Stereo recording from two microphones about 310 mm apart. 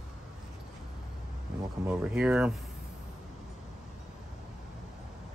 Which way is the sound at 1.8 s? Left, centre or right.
Centre.